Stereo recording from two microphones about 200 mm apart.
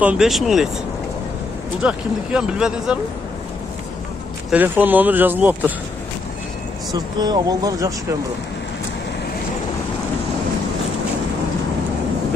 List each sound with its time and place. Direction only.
0.0 s speech: 5° right (ahead or behind)
1.8 s speech: 5° right (ahead or behind)
4.5 s speech: 10° right (ahead or behind)
6.9 s speech: 20° right (ahead or behind)